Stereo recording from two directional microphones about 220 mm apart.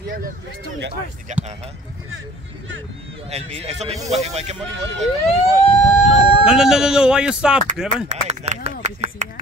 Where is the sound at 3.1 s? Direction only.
25° right (ahead or behind).